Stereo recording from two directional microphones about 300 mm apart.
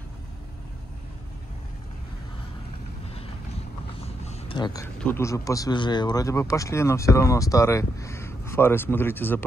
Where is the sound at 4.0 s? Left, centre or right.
Centre.